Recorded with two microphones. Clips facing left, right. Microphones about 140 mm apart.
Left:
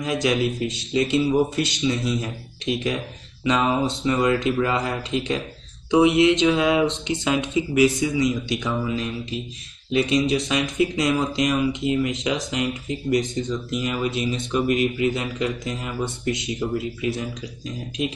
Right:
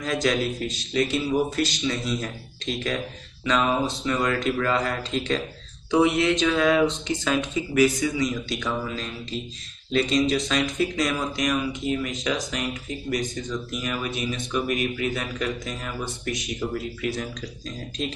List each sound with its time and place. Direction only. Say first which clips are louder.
0.0 s speech: left 2 dB; 15° left (ahead or behind)